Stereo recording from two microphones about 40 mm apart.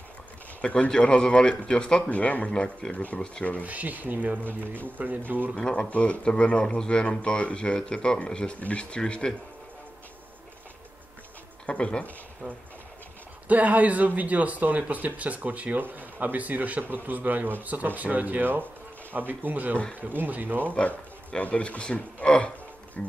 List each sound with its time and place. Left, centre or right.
0.6 s speech: left
0.8 s speech: left
2.0 s speech: left
3.6 s speech: right
5.6 s speech: left
5.9 s speech: left
6.3 s speech: left
8.5 s speech: left
8.9 s speech: left
11.6 s speech: left
13.5 s speech: right
20.7 s speech: left
23.0 s music: left